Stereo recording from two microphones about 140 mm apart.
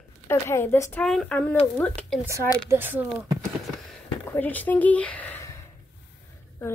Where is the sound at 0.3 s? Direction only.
20° left (ahead or behind).